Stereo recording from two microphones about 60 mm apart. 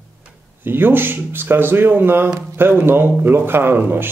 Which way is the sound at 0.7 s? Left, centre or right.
Right.